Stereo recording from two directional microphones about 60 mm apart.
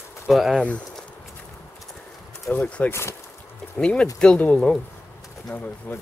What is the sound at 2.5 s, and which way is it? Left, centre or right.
Speech, left.